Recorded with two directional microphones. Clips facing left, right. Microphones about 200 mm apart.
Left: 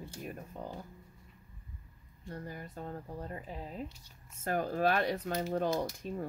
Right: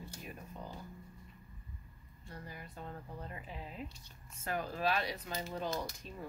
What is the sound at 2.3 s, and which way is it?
Speech, 45° left (ahead or behind).